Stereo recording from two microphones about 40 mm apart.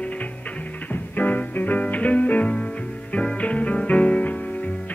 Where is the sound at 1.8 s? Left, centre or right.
Left.